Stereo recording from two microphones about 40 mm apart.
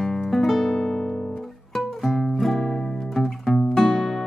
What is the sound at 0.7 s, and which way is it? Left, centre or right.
Music, centre.